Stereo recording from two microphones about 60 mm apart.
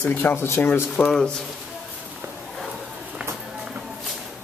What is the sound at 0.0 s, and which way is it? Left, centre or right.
Speech, left.